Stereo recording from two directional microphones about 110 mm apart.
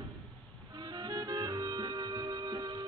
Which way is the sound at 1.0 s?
35° right (ahead or behind).